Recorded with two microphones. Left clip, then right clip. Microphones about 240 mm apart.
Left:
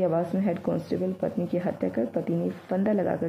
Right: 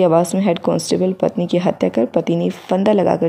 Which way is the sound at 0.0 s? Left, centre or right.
Right.